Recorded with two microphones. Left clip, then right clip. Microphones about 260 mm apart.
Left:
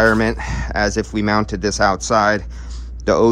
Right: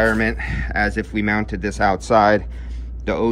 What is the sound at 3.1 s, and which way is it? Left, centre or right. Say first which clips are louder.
Speech: left 7 dB; centre.